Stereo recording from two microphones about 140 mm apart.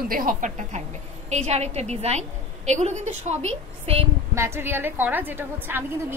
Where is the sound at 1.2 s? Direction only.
50° right (ahead or behind).